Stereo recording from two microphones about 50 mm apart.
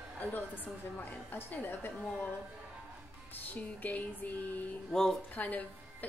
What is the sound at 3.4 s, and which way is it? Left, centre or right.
Speech, left.